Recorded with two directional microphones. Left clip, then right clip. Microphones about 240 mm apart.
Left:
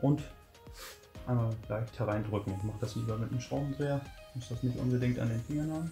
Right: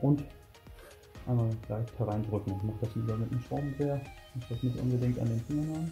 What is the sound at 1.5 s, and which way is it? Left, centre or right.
Speech, centre.